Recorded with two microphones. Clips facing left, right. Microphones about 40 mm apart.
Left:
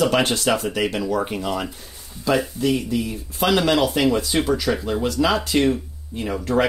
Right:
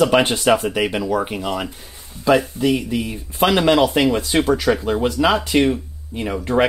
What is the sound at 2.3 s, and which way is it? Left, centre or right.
Speech, right.